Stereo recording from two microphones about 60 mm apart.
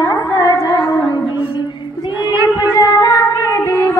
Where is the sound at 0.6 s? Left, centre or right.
Left.